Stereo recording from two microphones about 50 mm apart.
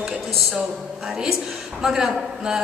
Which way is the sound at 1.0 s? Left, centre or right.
Centre.